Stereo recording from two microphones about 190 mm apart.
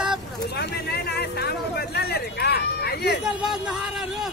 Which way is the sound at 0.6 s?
60° left (ahead or behind).